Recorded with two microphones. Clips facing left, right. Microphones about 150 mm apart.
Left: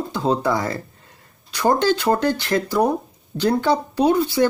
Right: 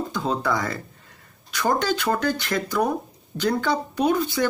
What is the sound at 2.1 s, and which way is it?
Speech, 25° left (ahead or behind).